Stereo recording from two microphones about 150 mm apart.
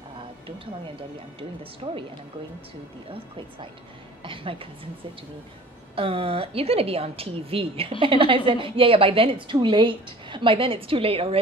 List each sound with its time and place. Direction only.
1.6 s a woman's voice: 35° right (ahead or behind)
3.1 s a woman's voice: 35° right (ahead or behind)
5.9 s a woman's voice: 40° right (ahead or behind)